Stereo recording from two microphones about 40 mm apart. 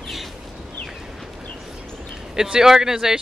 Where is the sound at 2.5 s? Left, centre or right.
Centre.